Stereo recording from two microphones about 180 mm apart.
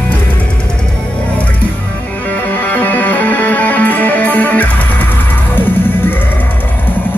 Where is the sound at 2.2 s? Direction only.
10° left (ahead or behind).